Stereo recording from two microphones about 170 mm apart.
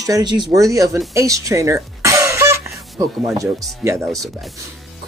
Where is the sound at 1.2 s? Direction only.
20° right (ahead or behind).